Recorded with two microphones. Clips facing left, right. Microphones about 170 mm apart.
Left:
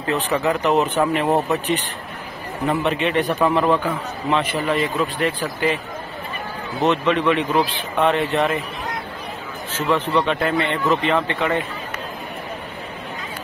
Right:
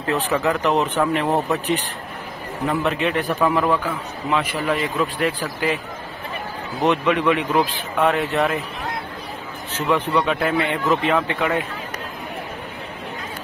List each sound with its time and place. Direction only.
0.0 s speech: centre (ahead or behind)
6.8 s speech: 10° right (ahead or behind)
9.8 s speech: 10° right (ahead or behind)